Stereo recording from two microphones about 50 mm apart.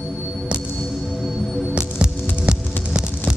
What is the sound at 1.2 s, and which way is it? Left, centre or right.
Music, centre.